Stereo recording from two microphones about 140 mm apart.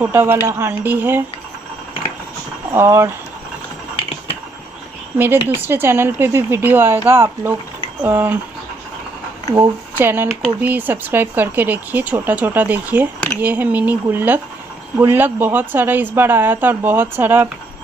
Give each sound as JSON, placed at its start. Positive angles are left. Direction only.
{"t": 0.0, "sound": "speech", "side_deg": -15}
{"t": 2.7, "sound": "speech", "side_deg": -20}
{"t": 5.1, "sound": "speech", "side_deg": -15}
{"t": 9.6, "sound": "speech", "side_deg": -15}